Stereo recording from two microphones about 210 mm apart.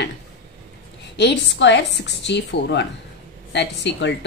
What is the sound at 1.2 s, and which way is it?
A woman's voice, 55° left (ahead or behind).